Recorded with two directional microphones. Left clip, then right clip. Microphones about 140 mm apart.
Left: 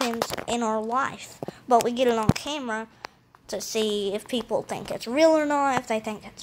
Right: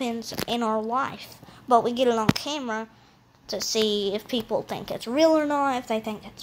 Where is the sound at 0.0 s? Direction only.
10° left (ahead or behind).